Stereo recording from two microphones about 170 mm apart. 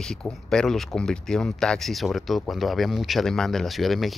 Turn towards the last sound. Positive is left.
turn(degrees=0)  # may be behind; listen again after turning